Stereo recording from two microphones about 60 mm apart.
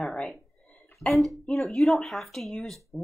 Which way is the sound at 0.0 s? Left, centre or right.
Centre.